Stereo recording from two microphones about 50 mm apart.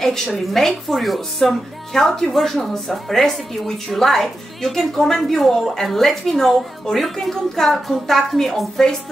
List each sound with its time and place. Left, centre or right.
0.0 s a woman's voice: centre